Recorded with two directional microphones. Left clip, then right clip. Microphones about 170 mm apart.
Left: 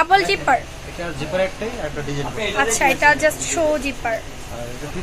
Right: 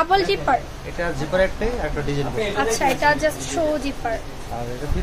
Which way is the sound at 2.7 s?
10° left (ahead or behind).